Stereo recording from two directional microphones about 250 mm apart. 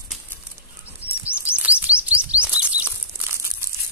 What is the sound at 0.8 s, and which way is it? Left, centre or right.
Chirp, centre.